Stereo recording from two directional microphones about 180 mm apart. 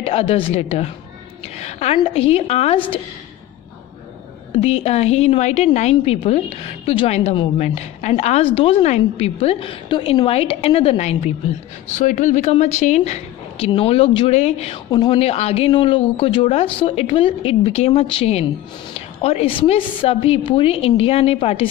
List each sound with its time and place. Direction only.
0.0 s a woman's voice: 35° left (ahead or behind)
4.5 s a woman's voice: 35° left (ahead or behind)